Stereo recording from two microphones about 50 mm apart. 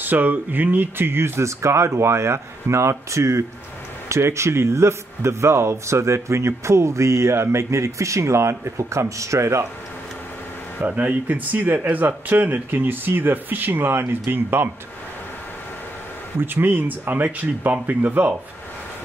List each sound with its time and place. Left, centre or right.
0.0 s speech: right
10.9 s speech: right
16.3 s speech: right